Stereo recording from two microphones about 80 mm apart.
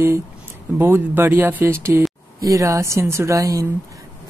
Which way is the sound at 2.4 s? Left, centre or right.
Right.